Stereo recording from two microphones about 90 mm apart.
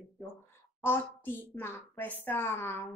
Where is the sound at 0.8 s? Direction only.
25° left (ahead or behind).